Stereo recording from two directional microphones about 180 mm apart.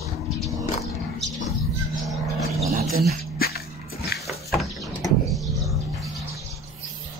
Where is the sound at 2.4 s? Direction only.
Centre (ahead or behind).